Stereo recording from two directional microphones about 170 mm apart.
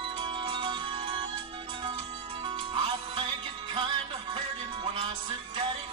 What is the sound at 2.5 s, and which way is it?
Music, 30° right (ahead or behind).